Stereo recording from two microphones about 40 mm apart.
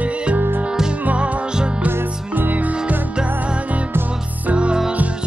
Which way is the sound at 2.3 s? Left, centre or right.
Right.